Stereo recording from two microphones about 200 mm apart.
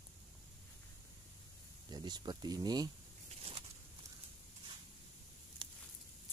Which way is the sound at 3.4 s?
30° right (ahead or behind).